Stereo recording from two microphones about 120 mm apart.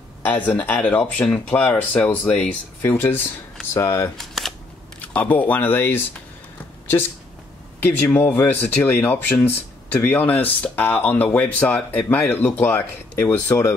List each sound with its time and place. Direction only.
0.2 s speech: 15° left (ahead or behind)
4.2 s camera: centre (ahead or behind)
5.0 s speech: 15° left (ahead or behind)
7.8 s speech: 15° left (ahead or behind)